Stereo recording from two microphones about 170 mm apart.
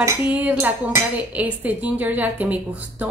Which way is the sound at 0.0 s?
15° right (ahead or behind).